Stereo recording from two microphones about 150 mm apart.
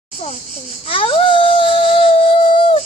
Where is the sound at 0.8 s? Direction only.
40° left (ahead or behind).